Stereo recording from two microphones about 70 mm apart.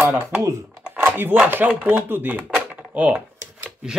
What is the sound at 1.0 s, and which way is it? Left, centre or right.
Speech, right.